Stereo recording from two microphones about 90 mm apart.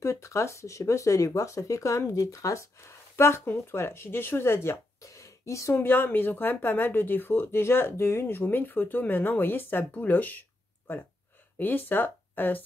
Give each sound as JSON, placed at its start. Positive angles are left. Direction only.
{"t": 0.0, "sound": "speech", "side_deg": 35}